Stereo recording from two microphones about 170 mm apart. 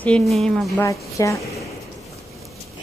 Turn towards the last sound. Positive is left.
turn(degrees=20)  # may be behind; listen again after turning